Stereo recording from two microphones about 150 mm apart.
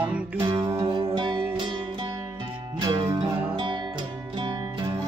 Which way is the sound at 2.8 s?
30° right (ahead or behind).